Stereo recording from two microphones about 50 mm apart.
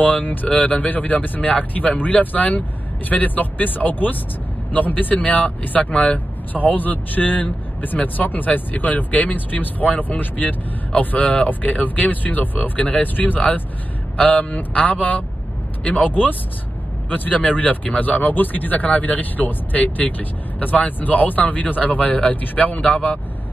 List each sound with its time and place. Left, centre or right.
0.0 s speech: left
12.7 s a man's voice: left